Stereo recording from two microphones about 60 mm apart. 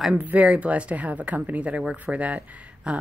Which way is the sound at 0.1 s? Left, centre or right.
Right.